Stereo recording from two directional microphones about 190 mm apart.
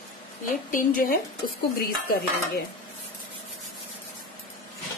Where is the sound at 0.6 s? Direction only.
45° left (ahead or behind).